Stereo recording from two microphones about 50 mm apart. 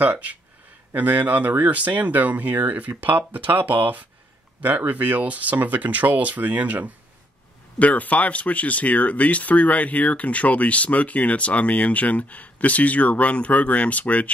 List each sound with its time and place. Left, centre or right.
0.0 s speech: right
7.8 s speech: left